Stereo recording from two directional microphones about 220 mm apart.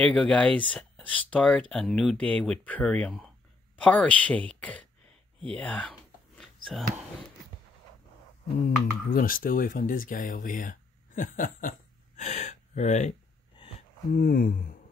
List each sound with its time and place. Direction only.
0.0 s speech: 5° left (ahead or behind)
5.5 s a sound: 5° left (ahead or behind)
8.6 s speech: 40° left (ahead or behind)
14.1 s speech: 40° left (ahead or behind)